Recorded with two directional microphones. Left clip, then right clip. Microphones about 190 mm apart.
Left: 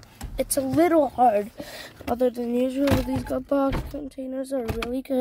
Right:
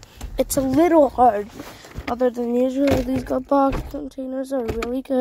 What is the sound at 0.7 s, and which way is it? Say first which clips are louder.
Speech: right 4 dB; 5° right (ahead or behind).